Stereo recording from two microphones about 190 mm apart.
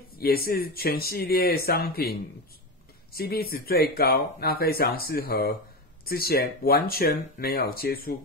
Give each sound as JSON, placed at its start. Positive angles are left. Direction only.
{"t": 0.2, "sound": "speech", "side_deg": 50}